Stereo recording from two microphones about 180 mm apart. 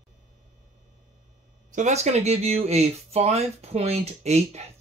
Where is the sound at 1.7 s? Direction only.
40° right (ahead or behind).